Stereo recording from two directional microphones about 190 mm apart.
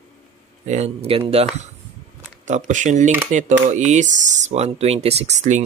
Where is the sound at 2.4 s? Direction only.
40° right (ahead or behind).